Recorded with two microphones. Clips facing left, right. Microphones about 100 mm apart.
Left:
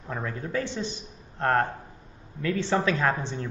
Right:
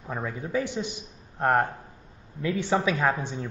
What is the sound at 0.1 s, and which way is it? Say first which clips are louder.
Speech: right 1 dB; 10° right (ahead or behind).